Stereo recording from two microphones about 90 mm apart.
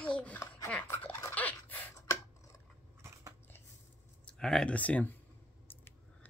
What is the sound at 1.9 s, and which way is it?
Chopping, 35° left (ahead or behind).